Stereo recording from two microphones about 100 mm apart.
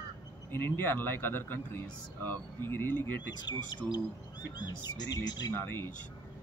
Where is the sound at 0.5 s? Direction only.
20° left (ahead or behind).